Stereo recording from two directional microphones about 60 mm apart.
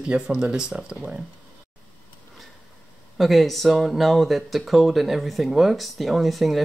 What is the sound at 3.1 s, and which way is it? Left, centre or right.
Speech, centre.